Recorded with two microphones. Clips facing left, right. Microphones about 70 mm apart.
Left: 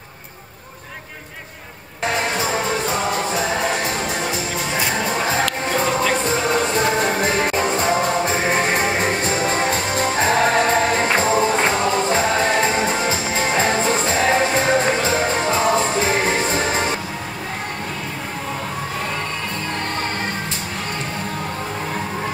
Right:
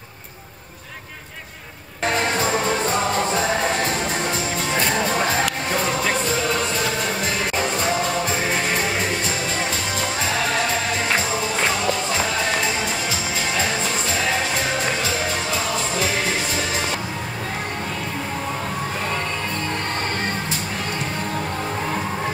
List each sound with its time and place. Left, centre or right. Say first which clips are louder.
4.7 s music: right 1 dB; centre
6.2 s music: left 3 dB; left